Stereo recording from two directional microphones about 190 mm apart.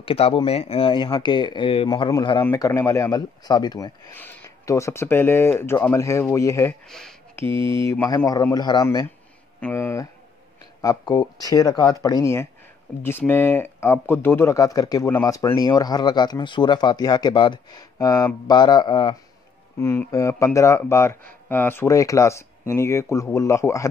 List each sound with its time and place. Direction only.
0.0 s speech: 30° left (ahead or behind)
6.9 s speech: centre (ahead or behind)
7.4 s speech: 25° right (ahead or behind)
7.7 s speech: 15° left (ahead or behind)
9.6 s speech: 10° left (ahead or behind)
19.8 s speech: 15° left (ahead or behind)